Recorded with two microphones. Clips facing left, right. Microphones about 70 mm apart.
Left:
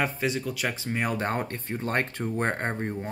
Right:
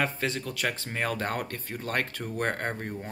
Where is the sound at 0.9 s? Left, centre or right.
Left.